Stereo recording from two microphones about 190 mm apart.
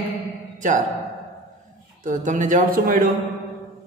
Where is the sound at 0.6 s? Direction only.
40° right (ahead or behind).